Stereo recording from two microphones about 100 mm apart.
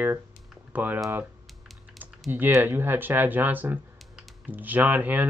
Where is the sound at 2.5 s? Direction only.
20° right (ahead or behind).